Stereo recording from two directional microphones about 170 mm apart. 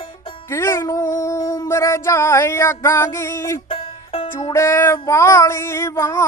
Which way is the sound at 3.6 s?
30° left (ahead or behind).